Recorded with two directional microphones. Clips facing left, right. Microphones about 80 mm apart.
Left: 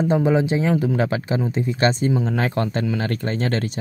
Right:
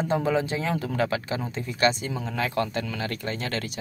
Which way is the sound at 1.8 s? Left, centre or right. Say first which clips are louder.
Left 4 dB; left.